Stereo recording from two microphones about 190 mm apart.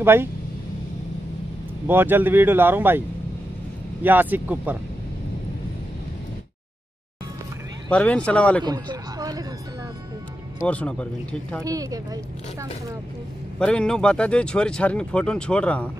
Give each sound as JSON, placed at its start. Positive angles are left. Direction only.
{"t": 0.0, "sound": "speech", "side_deg": -10}
{"t": 1.9, "sound": "speech", "side_deg": -10}
{"t": 4.0, "sound": "speech", "side_deg": -10}
{"t": 7.9, "sound": "speech", "side_deg": 5}
{"t": 8.6, "sound": "speech", "side_deg": -20}
{"t": 10.7, "sound": "speech", "side_deg": 5}
{"t": 11.6, "sound": "speech", "side_deg": -20}
{"t": 13.6, "sound": "speech", "side_deg": 5}